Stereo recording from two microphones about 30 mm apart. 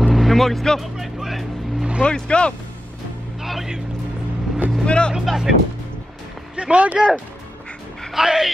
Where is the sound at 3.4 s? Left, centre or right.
Centre.